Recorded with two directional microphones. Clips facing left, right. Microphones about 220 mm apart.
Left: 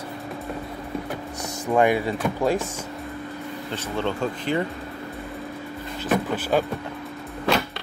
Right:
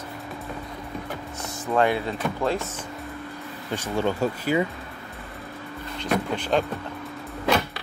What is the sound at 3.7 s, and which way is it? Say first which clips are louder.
Speech: right 2 dB; 10° right (ahead or behind).